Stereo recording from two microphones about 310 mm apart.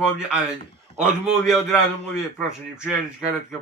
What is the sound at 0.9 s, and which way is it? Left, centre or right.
Speech, centre.